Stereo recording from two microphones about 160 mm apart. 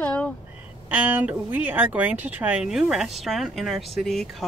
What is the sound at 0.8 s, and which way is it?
Speech, 10° right (ahead or behind).